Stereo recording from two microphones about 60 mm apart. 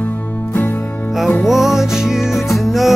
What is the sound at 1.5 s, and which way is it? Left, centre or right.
Music, centre.